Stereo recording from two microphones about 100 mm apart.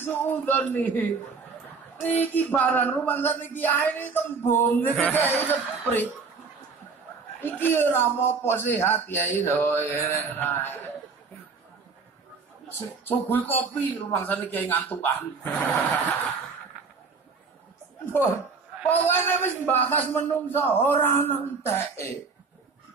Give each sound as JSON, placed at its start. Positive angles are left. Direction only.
{"t": 0.0, "sound": "a man's voice", "side_deg": 20}
{"t": 7.3, "sound": "speech", "side_deg": 20}
{"t": 12.7, "sound": "speech", "side_deg": 20}
{"t": 18.0, "sound": "speech", "side_deg": 25}